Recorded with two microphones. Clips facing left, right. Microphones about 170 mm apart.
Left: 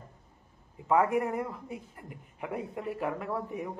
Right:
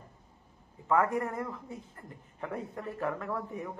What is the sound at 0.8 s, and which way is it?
A man's voice, 15° left (ahead or behind).